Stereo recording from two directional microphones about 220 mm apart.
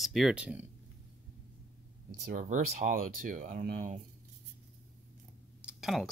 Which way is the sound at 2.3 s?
35° right (ahead or behind).